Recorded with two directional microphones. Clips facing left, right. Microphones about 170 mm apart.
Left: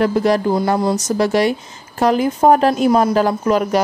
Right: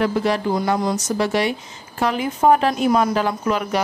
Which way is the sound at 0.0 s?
40° left (ahead or behind).